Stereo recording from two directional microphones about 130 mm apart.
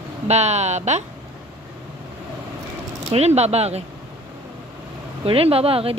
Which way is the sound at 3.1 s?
55° right (ahead or behind).